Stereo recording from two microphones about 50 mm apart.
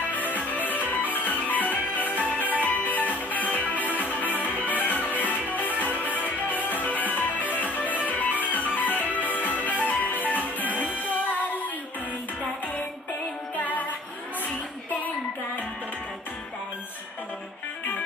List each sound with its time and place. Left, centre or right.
0.1 s music: left
10.6 s music: right
11.1 s music: left
13.6 s music: left